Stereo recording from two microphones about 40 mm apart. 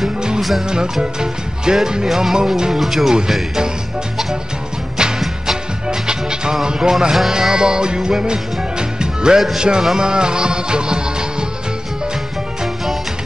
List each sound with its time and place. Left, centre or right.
0.4 s music: centre
1.2 s music: centre
2.0 s speech: centre
2.3 s music: centre
2.8 s speech: centre
5.9 s music: centre